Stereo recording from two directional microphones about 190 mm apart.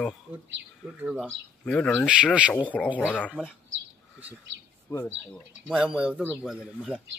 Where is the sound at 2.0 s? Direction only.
5° right (ahead or behind).